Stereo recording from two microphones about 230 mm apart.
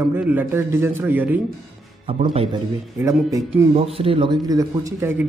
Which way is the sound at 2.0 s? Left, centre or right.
Right.